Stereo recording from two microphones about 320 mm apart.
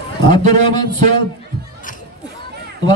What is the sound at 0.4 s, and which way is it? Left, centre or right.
Speech, right.